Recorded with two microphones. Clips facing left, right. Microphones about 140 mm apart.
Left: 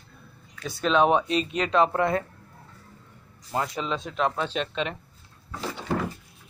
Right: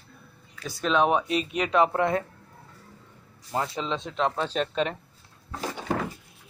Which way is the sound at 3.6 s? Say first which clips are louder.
Left 1 dB; 25° right (ahead or behind).